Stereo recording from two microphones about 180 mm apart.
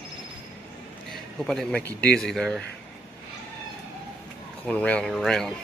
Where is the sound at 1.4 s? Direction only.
Centre (ahead or behind).